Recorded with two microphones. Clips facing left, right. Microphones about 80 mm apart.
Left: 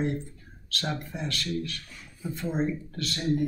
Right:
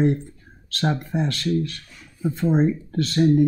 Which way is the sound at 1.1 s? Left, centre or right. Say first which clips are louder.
Right 11 dB; right.